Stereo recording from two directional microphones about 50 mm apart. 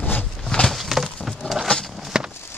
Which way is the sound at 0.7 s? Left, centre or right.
Centre.